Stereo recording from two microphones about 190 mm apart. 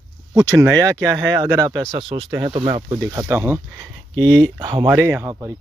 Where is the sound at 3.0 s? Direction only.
15° right (ahead or behind).